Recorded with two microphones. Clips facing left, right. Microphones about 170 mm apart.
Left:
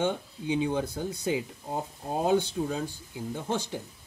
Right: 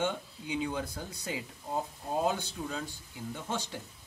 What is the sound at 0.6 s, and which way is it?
Speech, 25° left (ahead or behind).